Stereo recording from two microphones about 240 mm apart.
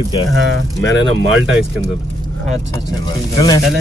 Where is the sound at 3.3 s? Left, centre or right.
Centre.